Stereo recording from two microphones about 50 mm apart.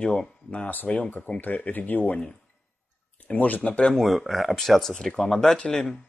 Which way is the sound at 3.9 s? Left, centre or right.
Centre.